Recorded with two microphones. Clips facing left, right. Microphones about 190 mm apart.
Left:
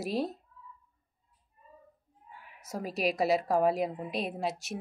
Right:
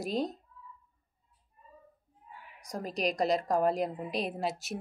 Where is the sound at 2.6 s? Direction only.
5° left (ahead or behind).